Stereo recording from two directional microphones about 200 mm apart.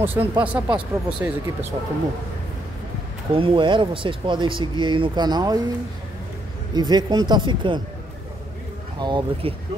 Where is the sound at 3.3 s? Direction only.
25° right (ahead or behind).